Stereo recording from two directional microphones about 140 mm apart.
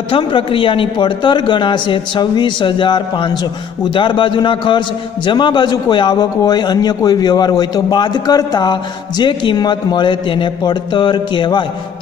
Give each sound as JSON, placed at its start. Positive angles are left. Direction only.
{"t": 0.1, "sound": "a man's voice", "side_deg": 40}